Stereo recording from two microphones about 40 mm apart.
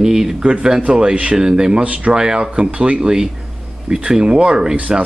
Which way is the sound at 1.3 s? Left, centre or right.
Centre.